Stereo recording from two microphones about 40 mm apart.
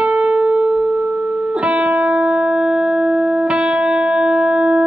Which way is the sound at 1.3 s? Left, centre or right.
Right.